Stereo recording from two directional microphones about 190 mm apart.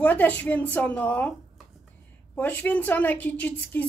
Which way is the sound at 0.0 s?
10° left (ahead or behind).